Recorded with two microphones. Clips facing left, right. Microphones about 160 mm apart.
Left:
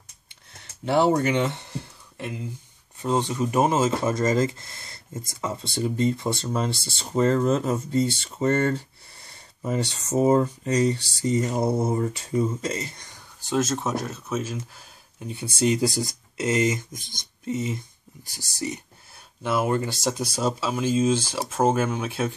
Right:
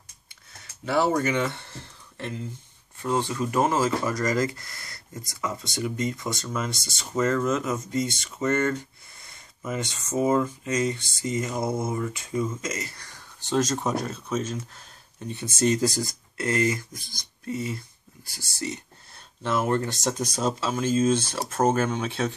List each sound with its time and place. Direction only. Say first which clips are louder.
0.8 s speech: left 3 dB; 25° left (ahead or behind)
13.5 s speech: even; 5° left (ahead or behind)